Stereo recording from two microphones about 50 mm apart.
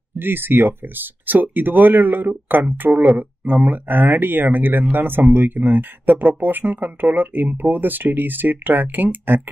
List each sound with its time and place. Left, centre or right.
0.2 s speech: right